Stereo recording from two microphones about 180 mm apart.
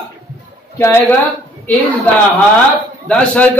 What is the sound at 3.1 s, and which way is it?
Speech, 5° left (ahead or behind).